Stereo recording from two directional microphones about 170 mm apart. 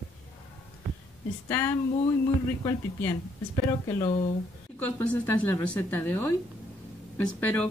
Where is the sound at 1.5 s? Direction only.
15° left (ahead or behind).